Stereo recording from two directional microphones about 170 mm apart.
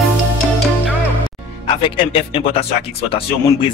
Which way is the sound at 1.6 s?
30° left (ahead or behind).